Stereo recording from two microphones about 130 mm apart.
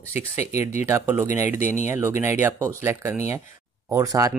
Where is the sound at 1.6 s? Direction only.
65° left (ahead or behind).